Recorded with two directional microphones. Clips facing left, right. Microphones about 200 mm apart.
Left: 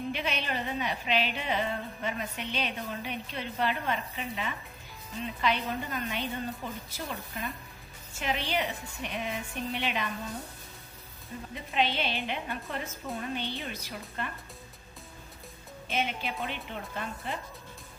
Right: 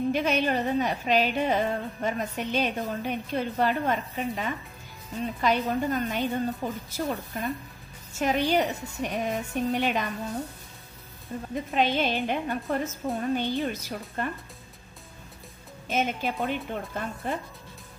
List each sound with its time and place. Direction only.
0.1 s a woman's voice: 45° right (ahead or behind)
11.5 s a woman's voice: 45° right (ahead or behind)
15.9 s a woman's voice: 45° right (ahead or behind)